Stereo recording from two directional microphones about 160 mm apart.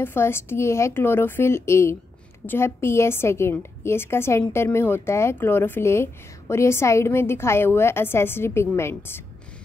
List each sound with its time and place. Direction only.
0.0 s a woman's voice: 15° left (ahead or behind)